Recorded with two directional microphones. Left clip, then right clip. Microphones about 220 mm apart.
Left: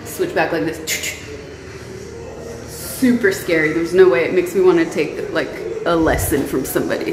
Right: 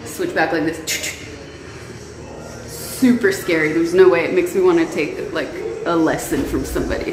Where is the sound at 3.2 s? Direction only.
Centre (ahead or behind); by 6.9 s 15° left (ahead or behind).